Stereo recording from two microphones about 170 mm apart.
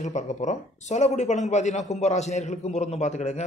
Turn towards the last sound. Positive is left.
turn(degrees=40)  # may be behind; listen again after turning